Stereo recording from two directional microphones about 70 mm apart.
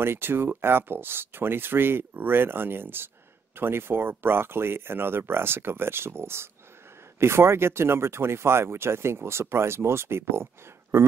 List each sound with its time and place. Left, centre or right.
0.0 s speech: right